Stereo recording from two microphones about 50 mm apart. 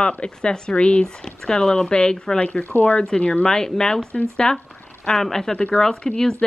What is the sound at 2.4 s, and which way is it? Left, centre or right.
Speech, left.